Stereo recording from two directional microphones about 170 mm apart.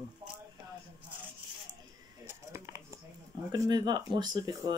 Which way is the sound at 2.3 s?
15° right (ahead or behind).